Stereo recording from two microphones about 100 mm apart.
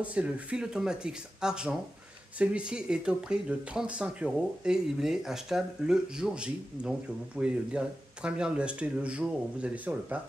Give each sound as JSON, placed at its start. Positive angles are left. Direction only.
{"t": 0.0, "sound": "speech", "side_deg": -15}